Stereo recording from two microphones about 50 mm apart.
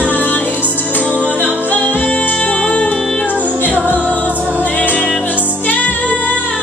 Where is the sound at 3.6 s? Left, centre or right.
Left.